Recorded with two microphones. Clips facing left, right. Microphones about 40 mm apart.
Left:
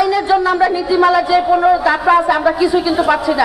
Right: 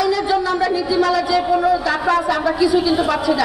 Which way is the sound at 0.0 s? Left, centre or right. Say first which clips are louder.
Left 4 dB; centre.